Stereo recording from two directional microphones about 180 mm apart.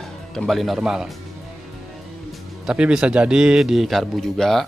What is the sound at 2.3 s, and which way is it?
Speech, 5° right (ahead or behind).